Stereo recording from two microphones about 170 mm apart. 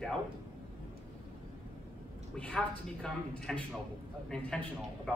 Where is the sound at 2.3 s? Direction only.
5° left (ahead or behind).